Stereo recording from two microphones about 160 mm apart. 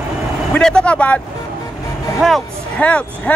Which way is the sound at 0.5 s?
5° left (ahead or behind).